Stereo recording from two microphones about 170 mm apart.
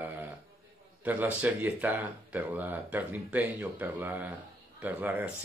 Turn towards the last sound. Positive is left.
turn(degrees=-10)  # may be behind; listen again after turning